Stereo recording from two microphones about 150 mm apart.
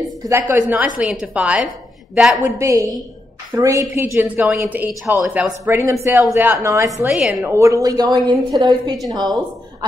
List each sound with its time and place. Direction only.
0.3 s a woman's voice: 15° right (ahead or behind)
2.4 s a woman's voice: 20° right (ahead or behind)
7.1 s a woman's voice: 5° right (ahead or behind)
7.4 s a woman's voice: 20° right (ahead or behind)